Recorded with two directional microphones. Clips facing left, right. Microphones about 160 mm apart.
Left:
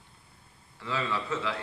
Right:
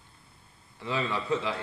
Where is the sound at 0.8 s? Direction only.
20° right (ahead or behind).